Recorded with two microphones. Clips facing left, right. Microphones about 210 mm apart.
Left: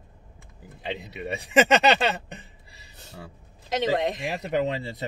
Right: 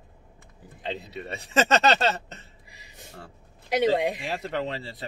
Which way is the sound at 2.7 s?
15° right (ahead or behind).